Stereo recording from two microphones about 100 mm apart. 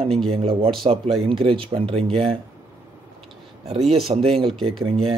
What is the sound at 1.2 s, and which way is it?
A man's voice, 65° right (ahead or behind).